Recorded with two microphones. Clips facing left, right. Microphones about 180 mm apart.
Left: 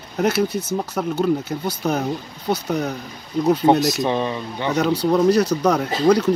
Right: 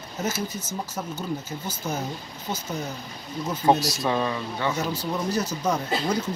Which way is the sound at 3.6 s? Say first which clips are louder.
Even; 20° left (ahead or behind).